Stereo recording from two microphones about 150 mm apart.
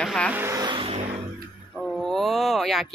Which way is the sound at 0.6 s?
35° right (ahead or behind).